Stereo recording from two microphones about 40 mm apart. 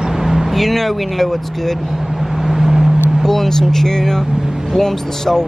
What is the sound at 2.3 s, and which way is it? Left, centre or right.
Vehicle, centre.